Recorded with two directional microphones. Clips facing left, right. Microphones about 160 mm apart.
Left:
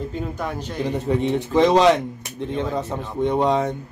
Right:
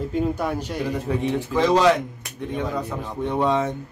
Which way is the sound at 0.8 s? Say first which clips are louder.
Left 4 dB; 20° left (ahead or behind).